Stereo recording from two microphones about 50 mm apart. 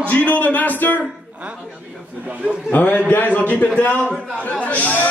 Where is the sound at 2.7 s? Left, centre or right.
Left.